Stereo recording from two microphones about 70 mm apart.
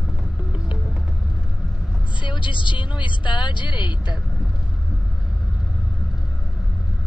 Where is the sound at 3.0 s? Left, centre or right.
Left.